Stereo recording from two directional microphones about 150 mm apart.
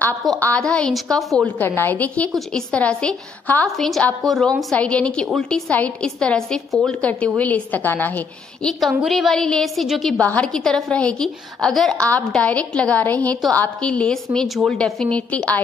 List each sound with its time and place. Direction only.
0.4 s a woman's voice: 10° left (ahead or behind)
8.6 s a woman's voice: centre (ahead or behind)